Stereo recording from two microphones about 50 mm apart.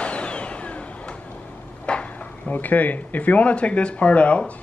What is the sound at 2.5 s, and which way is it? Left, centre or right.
Speech, left.